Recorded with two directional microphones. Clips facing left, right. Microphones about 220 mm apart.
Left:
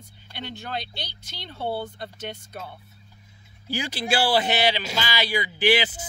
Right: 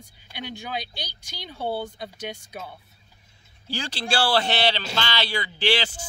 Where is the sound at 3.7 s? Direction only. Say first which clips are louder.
Left 2 dB; 20° left (ahead or behind).